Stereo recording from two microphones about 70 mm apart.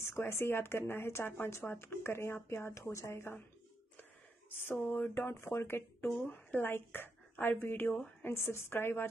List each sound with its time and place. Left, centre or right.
0.0 s speech: left
4.5 s speech: left